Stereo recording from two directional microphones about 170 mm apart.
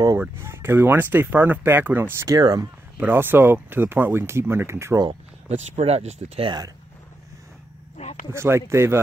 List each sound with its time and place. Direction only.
0.2 s speech: 15° right (ahead or behind)
3.0 s speech: 10° right (ahead or behind)
5.5 s speech: 40° right (ahead or behind)
8.0 s a sound: 40° left (ahead or behind)
8.3 s speech: 15° right (ahead or behind)